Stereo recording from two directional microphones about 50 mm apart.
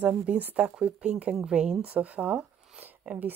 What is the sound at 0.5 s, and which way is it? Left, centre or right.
Speech, centre.